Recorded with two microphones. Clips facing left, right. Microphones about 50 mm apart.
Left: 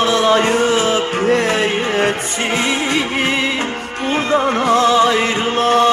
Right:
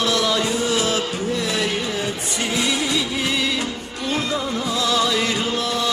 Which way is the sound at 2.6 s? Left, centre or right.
Left.